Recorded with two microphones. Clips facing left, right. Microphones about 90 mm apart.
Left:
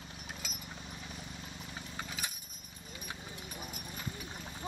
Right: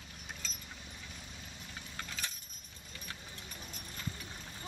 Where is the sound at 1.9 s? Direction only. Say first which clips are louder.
Left 1 dB; 15° left (ahead or behind).